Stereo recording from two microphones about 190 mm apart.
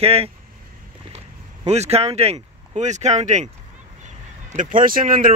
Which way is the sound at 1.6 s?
35° right (ahead or behind).